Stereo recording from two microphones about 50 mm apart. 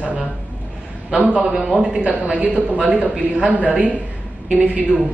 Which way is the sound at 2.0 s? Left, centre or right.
Right.